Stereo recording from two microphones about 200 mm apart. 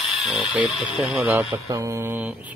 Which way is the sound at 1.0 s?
5° right (ahead or behind).